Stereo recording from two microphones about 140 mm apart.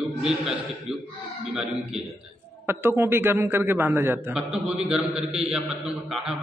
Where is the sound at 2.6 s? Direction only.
15° right (ahead or behind).